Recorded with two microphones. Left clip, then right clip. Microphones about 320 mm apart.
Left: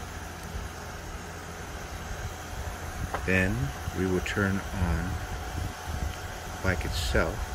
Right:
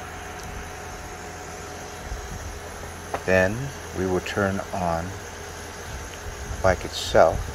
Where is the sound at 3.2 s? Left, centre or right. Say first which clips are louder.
Right 7 dB; right.